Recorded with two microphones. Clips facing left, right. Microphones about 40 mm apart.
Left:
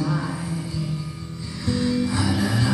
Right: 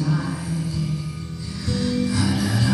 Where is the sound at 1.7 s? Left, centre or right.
Centre.